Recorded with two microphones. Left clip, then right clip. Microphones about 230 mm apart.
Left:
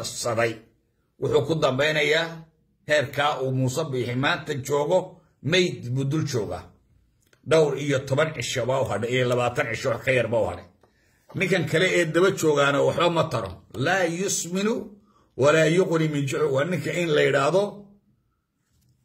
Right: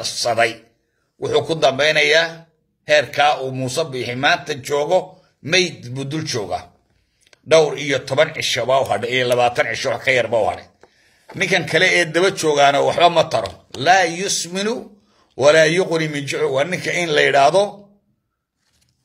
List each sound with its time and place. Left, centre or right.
0.0 s a man's voice: centre